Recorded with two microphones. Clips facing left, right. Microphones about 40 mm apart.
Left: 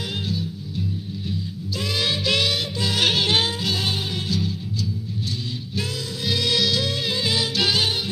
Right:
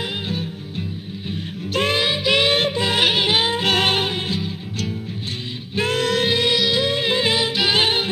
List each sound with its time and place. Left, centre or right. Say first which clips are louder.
0.3 s music: right 2 dB; right
2.0 s music: even; right
2.5 s music: right 6 dB; right
3.0 s music: right 1 dB; centre
3.5 s music: right 7 dB; right
4.1 s music: right 1 dB; right
5.8 s music: right 11 dB; right
6.2 s music: right 5 dB; right
6.5 s music: right 3 dB; right
7.7 s music: right 4 dB; right